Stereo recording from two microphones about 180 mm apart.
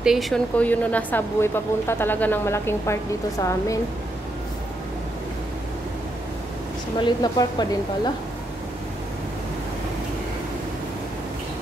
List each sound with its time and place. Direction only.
0.0 s speech: centre (ahead or behind); by 3.7 s 15° left (ahead or behind)
7.0 s a woman's voice: 25° left (ahead or behind)